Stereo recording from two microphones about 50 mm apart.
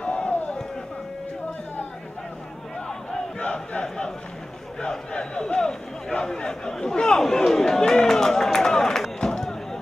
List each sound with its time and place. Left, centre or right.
0.0 s a sound: left
2.9 s battle cry: centre
3.4 s crowd: left
3.8 s a man's voice: centre